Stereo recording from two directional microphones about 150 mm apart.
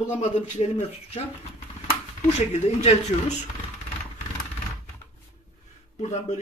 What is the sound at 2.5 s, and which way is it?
Speech, 45° left (ahead or behind).